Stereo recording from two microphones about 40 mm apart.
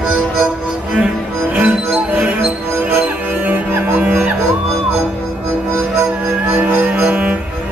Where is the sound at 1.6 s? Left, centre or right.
Right.